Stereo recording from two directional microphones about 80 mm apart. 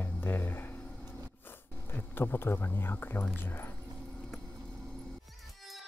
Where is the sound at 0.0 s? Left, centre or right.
Left.